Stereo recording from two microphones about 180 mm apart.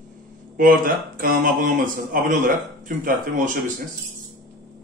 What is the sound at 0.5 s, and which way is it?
Speech, 50° right (ahead or behind).